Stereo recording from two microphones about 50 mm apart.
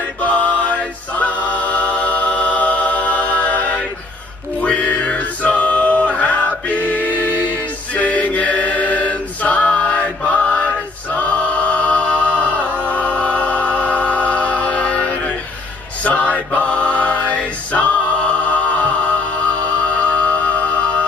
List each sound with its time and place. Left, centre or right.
0.2 s music: left
11.1 s choir: left
12.8 s music: left
16.0 s male singing: left
16.5 s mantra: left
17.8 s music: left